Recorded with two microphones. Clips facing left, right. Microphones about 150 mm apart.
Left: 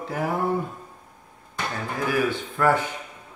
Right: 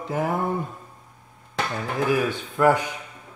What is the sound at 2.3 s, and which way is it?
Speech, 15° right (ahead or behind).